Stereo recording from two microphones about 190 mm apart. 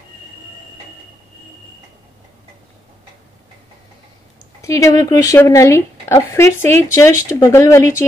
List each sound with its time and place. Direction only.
4.6 s speech: 15° left (ahead or behind)